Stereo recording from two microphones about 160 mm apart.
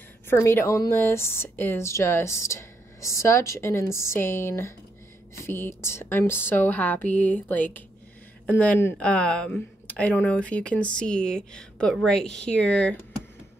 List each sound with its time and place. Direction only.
0.3 s speech: 15° left (ahead or behind)